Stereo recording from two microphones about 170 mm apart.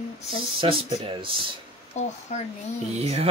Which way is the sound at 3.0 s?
35° right (ahead or behind).